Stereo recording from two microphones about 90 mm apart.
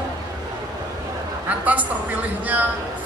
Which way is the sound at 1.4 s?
20° right (ahead or behind).